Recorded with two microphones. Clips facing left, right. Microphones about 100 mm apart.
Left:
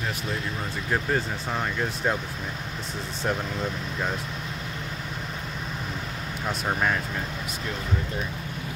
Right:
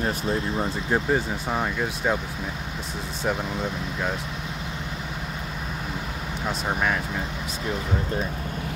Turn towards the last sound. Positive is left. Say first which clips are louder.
# right 1 dB
turn(degrees=0)  # may be behind; listen again after turning